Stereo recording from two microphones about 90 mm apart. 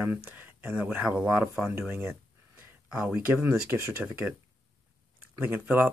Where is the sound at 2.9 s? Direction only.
10° right (ahead or behind).